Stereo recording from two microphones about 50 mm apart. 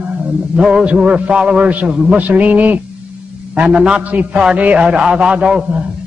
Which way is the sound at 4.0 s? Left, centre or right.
Right.